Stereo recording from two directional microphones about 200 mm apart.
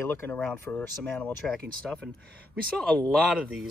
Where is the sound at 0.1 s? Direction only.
10° left (ahead or behind).